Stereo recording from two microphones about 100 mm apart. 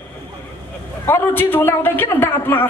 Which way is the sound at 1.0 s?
20° left (ahead or behind).